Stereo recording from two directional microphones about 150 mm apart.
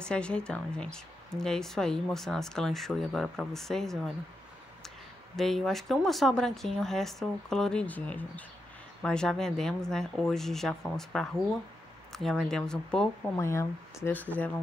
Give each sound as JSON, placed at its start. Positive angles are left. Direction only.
{"t": 0.0, "sound": "speech", "side_deg": 5}
{"t": 13.4, "sound": "speech", "side_deg": 20}